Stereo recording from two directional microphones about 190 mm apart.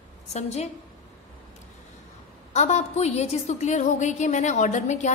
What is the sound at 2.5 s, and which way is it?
A woman's voice, 35° left (ahead or behind).